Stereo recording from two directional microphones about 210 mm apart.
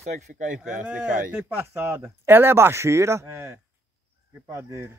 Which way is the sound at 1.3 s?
10° right (ahead or behind).